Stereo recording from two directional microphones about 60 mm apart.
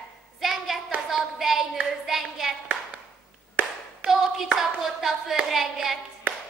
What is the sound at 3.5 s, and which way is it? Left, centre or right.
Clapping, right.